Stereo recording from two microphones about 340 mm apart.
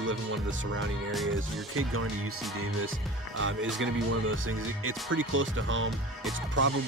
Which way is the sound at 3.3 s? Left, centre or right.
Right.